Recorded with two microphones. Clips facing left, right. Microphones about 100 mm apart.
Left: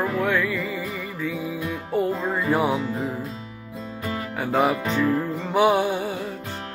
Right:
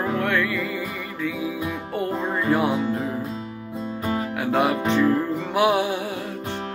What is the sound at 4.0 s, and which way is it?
Music, 30° right (ahead or behind).